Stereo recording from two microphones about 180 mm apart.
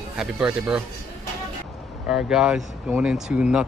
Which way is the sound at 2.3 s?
5° right (ahead or behind).